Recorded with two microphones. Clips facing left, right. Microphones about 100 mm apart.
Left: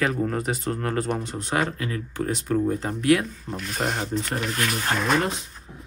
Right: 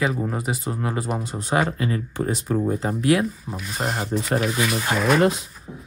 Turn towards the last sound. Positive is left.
turn(degrees=-5)  # may be behind; listen again after turning